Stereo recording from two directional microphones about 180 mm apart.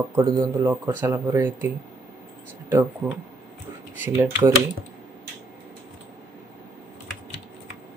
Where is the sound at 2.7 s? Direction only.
10° right (ahead or behind).